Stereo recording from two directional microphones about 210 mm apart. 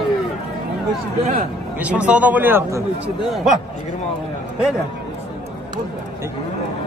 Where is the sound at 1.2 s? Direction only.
40° right (ahead or behind).